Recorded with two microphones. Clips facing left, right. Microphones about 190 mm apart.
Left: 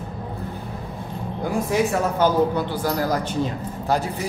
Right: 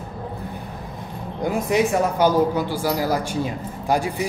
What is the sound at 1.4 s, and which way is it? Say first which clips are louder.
Speech: right 2 dB; 20° right (ahead or behind).